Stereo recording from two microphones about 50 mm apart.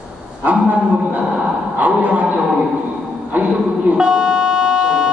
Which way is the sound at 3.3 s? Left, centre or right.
Right.